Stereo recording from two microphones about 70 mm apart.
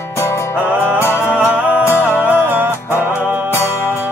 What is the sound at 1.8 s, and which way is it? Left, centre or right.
Music, left.